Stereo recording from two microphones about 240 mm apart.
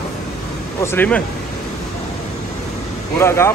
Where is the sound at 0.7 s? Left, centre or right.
Centre.